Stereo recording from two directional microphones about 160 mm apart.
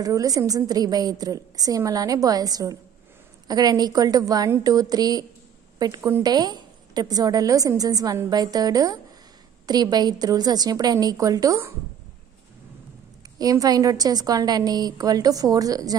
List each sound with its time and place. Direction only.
0.0 s a woman's voice: 20° right (ahead or behind)
13.4 s a woman's voice: 25° right (ahead or behind)